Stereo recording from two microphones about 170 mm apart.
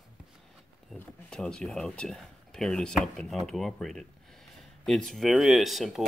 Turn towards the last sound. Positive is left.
turn(degrees=0)  # may be behind; listen again after turning